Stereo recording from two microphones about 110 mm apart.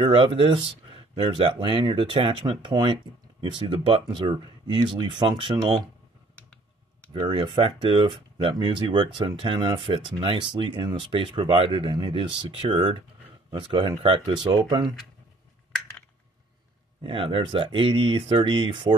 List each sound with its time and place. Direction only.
0.0 s speech: 50° right (ahead or behind)
7.2 s speech: 45° right (ahead or behind)
17.0 s speech: 50° right (ahead or behind)